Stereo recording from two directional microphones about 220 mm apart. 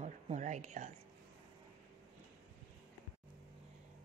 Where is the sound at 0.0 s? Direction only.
35° right (ahead or behind).